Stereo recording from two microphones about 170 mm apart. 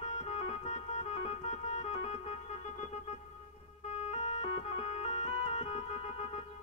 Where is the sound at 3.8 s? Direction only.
40° left (ahead or behind).